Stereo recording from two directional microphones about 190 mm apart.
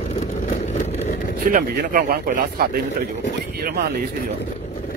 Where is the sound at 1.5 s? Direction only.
45° right (ahead or behind).